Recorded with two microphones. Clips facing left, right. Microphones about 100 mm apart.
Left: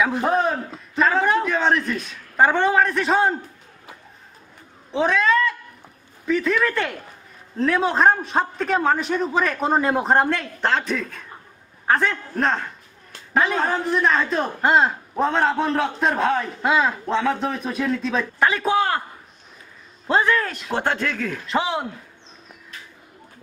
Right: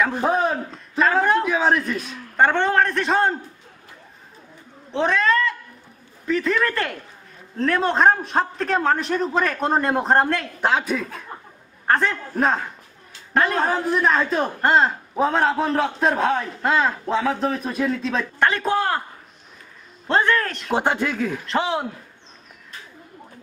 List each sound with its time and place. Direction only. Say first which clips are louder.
0.0 s a man's voice: even; centre (ahead or behind)
4.9 s a woman's voice: left 1 dB; centre (ahead or behind)
20.1 s a man's voice: even; 5° left (ahead or behind)
20.7 s speech: right 2 dB; 15° right (ahead or behind)
21.5 s a man's voice: left 1 dB; centre (ahead or behind)